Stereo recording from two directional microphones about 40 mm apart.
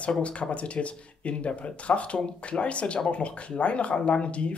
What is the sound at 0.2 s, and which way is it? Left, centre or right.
Speech, left.